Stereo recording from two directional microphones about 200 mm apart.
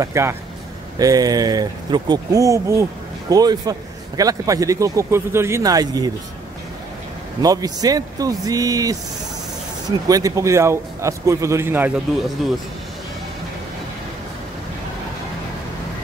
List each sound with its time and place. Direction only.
0.0 s speech: 15° right (ahead or behind)
7.4 s speech: 20° right (ahead or behind)